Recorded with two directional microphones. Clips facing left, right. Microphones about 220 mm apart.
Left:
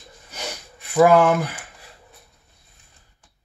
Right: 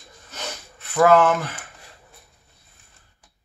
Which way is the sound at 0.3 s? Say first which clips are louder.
Left 1 dB; 10° left (ahead or behind).